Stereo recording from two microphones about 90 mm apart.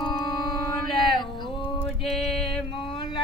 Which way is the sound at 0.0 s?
55° left (ahead or behind).